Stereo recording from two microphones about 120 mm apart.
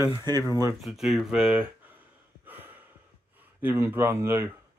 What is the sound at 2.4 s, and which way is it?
Gasp, 15° right (ahead or behind).